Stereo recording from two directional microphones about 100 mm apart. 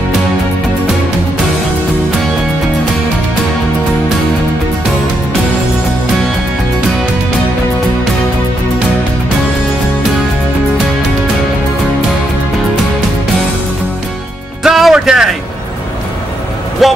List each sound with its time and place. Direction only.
14.6 s music: 5° right (ahead or behind)
16.8 s music: centre (ahead or behind)